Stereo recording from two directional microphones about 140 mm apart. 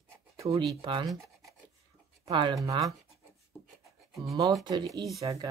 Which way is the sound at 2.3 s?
35° right (ahead or behind).